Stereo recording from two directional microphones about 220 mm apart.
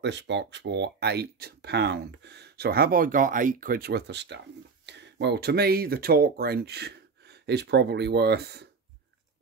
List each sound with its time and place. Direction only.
0.0 s speech: 50° right (ahead or behind)